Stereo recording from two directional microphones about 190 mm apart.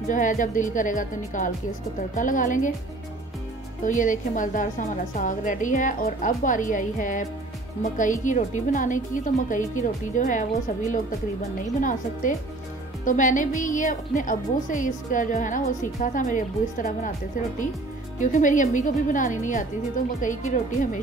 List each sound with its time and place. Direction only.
0.1 s a woman's voice: 45° left (ahead or behind)
3.8 s a woman's voice: 45° left (ahead or behind)
11.8 s a woman's voice: 45° left (ahead or behind)
18.2 s a woman's voice: 40° left (ahead or behind)